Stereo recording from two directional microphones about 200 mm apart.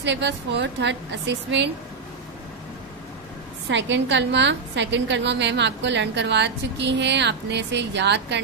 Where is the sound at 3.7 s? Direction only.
65° right (ahead or behind).